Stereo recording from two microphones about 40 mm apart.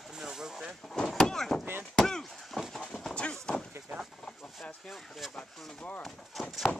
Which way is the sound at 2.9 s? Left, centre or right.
Left.